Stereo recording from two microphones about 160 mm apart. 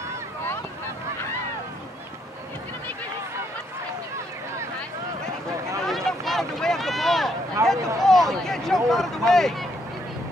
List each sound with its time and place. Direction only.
5.8 s a sound: centre (ahead or behind)
7.6 s speech: 15° right (ahead or behind)
8.0 s speech: centre (ahead or behind)